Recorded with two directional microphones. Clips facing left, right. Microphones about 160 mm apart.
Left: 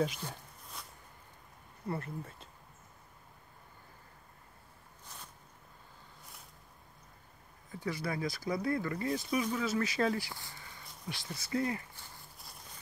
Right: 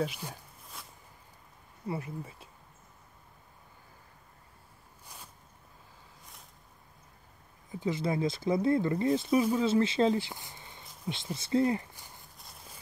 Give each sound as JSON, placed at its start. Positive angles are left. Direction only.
{"t": 0.0, "sound": "zipper", "side_deg": -5}
{"t": 1.9, "sound": "speech", "side_deg": -10}
{"t": 7.7, "sound": "speech", "side_deg": -20}